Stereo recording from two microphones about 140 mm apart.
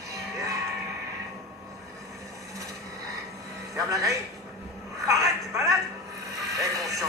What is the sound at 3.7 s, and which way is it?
Speech, 25° right (ahead or behind).